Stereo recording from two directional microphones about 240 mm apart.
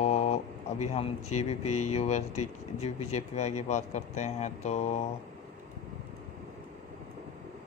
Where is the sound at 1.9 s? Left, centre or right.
Left.